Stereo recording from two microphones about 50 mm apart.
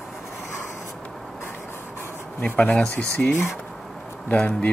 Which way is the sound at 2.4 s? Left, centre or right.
Left.